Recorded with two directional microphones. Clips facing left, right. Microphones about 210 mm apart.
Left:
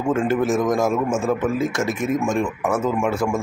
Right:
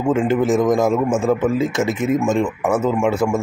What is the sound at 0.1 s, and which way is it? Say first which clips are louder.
A man's voice: right 3 dB; 15° right (ahead or behind).